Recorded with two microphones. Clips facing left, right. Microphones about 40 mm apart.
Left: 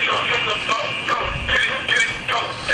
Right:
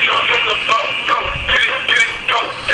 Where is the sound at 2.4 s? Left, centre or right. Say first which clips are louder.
Right 4 dB; centre.